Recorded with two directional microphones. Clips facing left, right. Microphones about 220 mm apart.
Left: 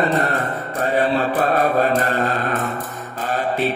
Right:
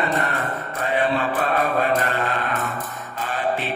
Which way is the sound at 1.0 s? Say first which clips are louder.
Left 3 dB; 40° left (ahead or behind).